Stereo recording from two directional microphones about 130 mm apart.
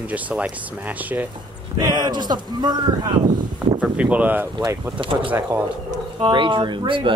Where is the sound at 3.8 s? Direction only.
10° right (ahead or behind).